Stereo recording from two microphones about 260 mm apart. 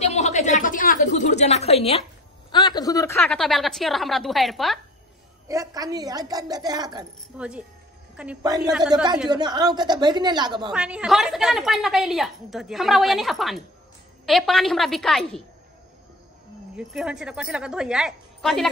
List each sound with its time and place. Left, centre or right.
0.0 s a woman's voice: left
3.2 s a woman's voice: centre
5.5 s a woman's voice: centre
7.3 s a woman's voice: centre
8.7 s a woman's voice: centre
9.3 s a woman's voice: centre
10.7 s a woman's voice: centre
16.7 s a woman's voice: centre